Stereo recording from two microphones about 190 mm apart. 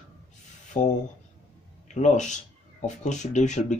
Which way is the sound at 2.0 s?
40° left (ahead or behind).